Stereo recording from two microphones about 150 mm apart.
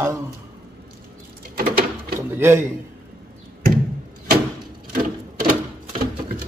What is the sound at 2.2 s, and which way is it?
Speech, 15° right (ahead or behind).